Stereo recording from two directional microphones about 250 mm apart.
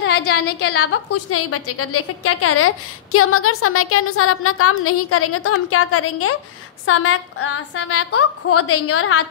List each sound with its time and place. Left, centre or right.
0.3 s a woman's voice: left